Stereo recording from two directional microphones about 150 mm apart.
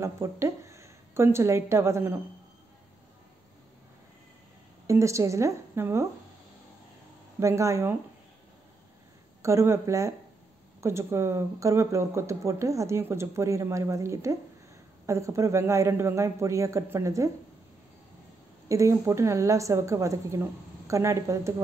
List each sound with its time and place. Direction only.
0.0 s a woman's voice: 20° right (ahead or behind)
4.8 s speech: 20° right (ahead or behind)
7.3 s speech: 20° right (ahead or behind)
9.4 s speech: 20° right (ahead or behind)
18.7 s speech: 20° right (ahead or behind)